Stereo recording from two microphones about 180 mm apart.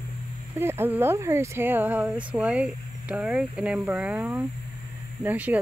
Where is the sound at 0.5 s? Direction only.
15° right (ahead or behind).